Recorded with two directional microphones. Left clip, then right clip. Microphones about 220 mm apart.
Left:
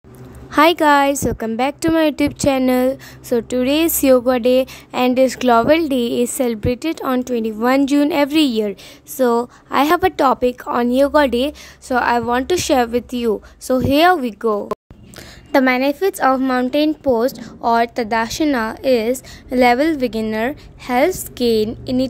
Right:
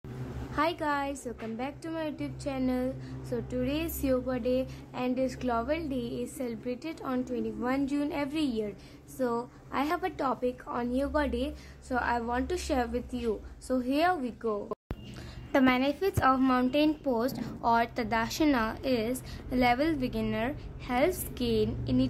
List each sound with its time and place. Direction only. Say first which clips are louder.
0.5 s a woman's voice: left 18 dB; 45° left (ahead or behind)
15.5 s a woman's voice: left 11 dB; 30° left (ahead or behind)